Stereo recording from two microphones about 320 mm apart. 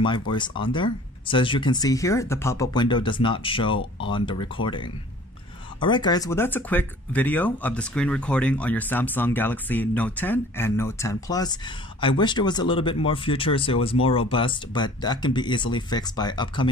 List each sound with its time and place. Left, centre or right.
0.3 s speech: centre